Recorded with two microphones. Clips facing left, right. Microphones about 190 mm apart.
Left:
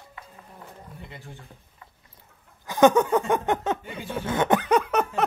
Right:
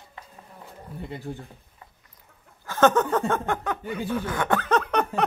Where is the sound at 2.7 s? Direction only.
15° left (ahead or behind).